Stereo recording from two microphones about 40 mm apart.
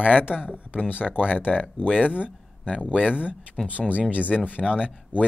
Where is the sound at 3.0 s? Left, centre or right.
Right.